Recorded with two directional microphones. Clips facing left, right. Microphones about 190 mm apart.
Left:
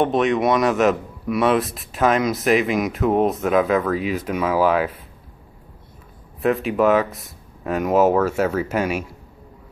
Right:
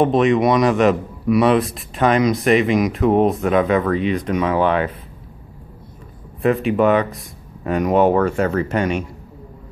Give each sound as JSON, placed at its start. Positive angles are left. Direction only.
{"t": 0.0, "sound": "a man's voice", "side_deg": 0}
{"t": 6.4, "sound": "a man's voice", "side_deg": 0}